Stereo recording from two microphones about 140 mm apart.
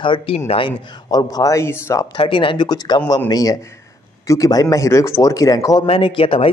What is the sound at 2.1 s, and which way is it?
A woman's voice, 40° left (ahead or behind).